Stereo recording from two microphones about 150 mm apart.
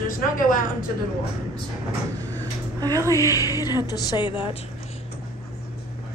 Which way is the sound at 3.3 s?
25° left (ahead or behind).